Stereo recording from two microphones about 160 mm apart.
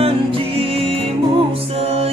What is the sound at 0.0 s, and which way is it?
Music, 35° right (ahead or behind).